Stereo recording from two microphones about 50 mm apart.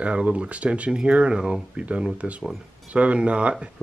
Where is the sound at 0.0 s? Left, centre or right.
Right.